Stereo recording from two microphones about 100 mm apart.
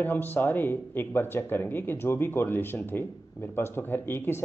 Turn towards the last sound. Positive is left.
turn(degrees=20)  # may be behind; listen again after turning